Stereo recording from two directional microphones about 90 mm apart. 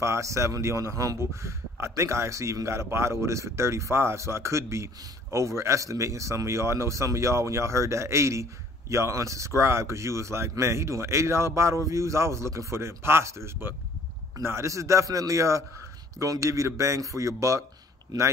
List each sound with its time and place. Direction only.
0.0 s a man's voice: 35° right (ahead or behind)
18.1 s speech: 50° right (ahead or behind)